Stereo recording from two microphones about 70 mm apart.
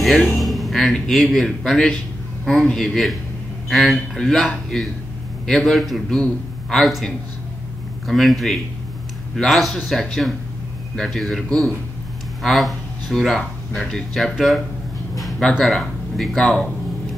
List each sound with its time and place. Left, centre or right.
0.0 s a man's voice: centre
8.1 s a man's voice: centre
15.1 s a sound: centre
15.6 s speech: centre